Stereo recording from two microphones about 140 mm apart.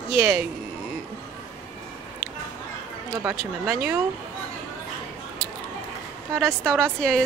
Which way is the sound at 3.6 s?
10° right (ahead or behind).